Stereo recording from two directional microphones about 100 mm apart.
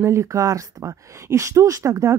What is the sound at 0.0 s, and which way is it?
A woman's voice, 30° right (ahead or behind).